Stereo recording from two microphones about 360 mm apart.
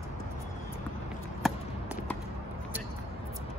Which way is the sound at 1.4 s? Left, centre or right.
Centre.